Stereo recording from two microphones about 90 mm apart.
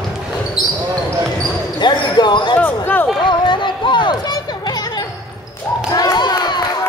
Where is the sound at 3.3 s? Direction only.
60° left (ahead or behind).